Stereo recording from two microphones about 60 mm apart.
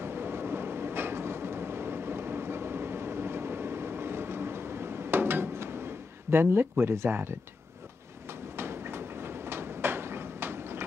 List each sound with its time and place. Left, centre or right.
0.0 s train: right
6.3 s speech: right
8.5 s train: right